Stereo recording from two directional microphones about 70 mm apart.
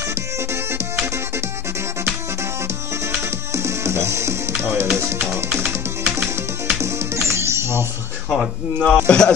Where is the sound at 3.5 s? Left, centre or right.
Right.